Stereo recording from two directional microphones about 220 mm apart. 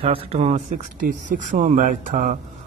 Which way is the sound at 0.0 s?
25° right (ahead or behind).